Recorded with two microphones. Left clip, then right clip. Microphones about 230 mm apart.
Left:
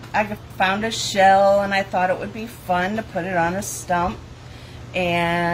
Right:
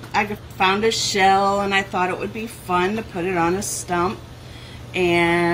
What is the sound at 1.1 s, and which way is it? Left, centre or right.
Speech, centre.